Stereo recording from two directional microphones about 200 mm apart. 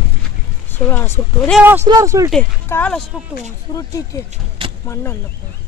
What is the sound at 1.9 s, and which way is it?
Speech, 15° right (ahead or behind).